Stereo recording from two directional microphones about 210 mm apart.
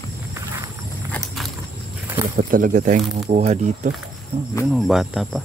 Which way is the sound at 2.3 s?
40° right (ahead or behind).